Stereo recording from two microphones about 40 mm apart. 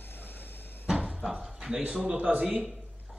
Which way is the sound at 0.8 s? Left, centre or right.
Centre.